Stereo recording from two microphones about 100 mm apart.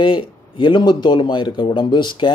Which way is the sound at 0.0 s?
55° left (ahead or behind).